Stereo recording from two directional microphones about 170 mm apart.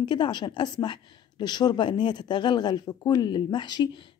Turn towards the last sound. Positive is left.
turn(degrees=25)  # may be behind; listen again after turning